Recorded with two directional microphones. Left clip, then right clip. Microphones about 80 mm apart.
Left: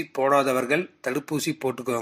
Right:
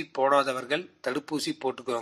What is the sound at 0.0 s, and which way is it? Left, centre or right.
Speech, left.